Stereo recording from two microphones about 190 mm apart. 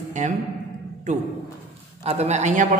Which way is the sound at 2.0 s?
35° right (ahead or behind).